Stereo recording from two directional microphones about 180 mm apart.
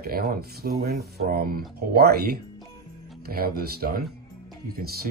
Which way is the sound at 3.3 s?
55° right (ahead or behind).